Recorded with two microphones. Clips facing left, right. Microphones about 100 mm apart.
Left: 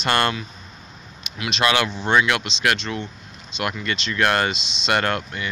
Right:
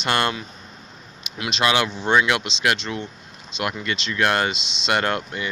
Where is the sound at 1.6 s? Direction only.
15° right (ahead or behind).